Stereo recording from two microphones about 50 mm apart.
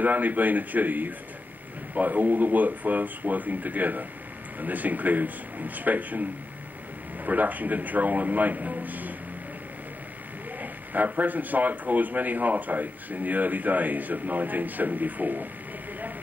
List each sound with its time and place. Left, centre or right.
0.0 s speech: right
7.2 s speech: right
10.6 s speech: right